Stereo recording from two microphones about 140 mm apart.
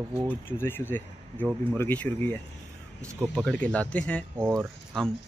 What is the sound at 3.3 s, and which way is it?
Speech, 5° left (ahead or behind).